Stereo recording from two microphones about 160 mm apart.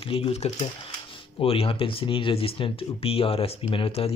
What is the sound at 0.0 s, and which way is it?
Speech, 35° left (ahead or behind).